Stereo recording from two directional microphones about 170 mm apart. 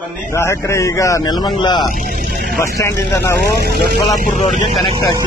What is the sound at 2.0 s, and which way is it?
Speech, 65° right (ahead or behind).